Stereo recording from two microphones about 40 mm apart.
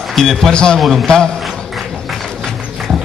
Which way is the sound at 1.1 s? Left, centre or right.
Centre.